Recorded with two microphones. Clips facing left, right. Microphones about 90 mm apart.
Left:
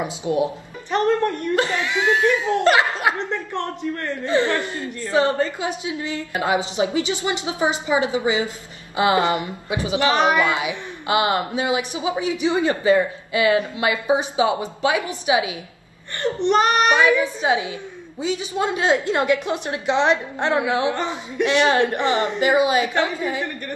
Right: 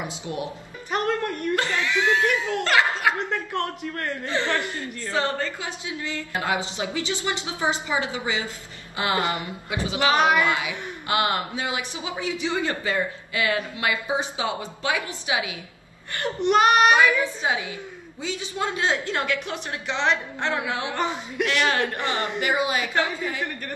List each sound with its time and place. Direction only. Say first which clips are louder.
0.0 s speech: left 9 dB; 20° left (ahead or behind)
1.5 s speech: left 3 dB; 20° left (ahead or behind)
16.2 s speech: left 2 dB; 10° right (ahead or behind)
17.0 s speech: left 3 dB; 20° left (ahead or behind)